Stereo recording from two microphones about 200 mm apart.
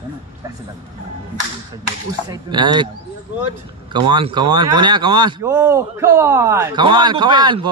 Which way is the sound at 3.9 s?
20° right (ahead or behind).